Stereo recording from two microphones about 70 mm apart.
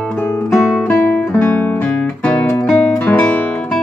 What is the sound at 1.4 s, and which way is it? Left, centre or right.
Music, left.